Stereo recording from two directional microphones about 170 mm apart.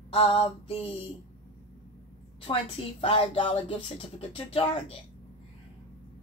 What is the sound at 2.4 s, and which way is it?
A woman's voice, 30° left (ahead or behind).